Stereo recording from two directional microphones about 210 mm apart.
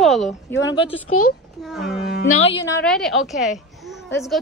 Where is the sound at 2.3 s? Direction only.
25° left (ahead or behind).